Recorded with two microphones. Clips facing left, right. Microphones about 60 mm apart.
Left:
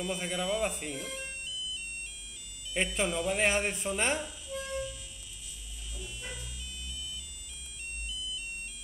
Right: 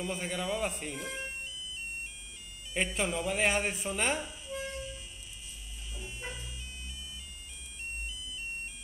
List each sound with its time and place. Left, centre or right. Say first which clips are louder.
0.1 s speech: left 3 dB; centre
0.9 s siren: right 1 dB; right
2.7 s speech: left 1 dB; centre
4.2 s music: even; right
5.9 s a sound: right 1 dB; right
8.1 s a sound: left 4 dB; right